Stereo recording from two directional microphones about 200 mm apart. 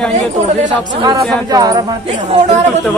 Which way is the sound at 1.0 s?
20° right (ahead or behind).